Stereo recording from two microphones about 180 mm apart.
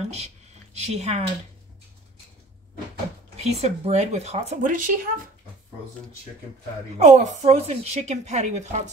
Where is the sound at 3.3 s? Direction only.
35° right (ahead or behind).